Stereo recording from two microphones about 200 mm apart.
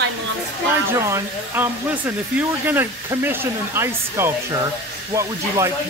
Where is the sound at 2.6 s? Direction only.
10° right (ahead or behind).